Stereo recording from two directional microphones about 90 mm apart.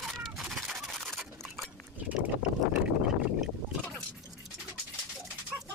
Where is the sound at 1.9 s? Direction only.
15° right (ahead or behind).